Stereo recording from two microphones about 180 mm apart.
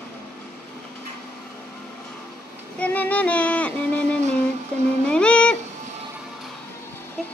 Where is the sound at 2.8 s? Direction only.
10° left (ahead or behind).